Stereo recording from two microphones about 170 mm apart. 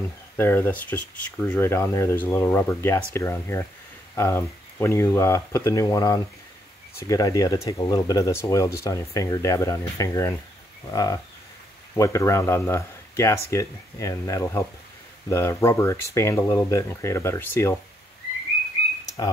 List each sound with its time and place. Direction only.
0.4 s speech: 10° left (ahead or behind)